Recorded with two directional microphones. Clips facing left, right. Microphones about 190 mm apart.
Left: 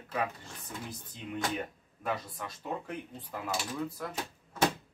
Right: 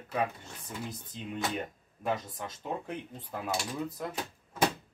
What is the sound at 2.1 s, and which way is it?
Speech, 20° right (ahead or behind).